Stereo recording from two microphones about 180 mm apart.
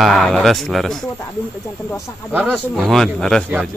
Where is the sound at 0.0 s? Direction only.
Centre (ahead or behind).